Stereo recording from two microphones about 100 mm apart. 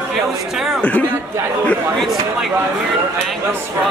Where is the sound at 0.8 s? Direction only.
15° left (ahead or behind).